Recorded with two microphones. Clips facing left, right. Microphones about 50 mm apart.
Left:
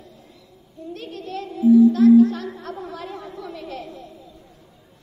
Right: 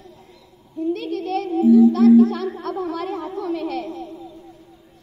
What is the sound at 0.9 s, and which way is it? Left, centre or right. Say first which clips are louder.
Speech: right 8 dB; right.